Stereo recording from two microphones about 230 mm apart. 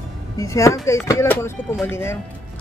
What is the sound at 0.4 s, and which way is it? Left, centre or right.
Speech, centre.